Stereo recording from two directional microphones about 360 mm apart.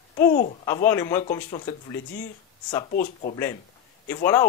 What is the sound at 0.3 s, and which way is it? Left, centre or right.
Speech, left.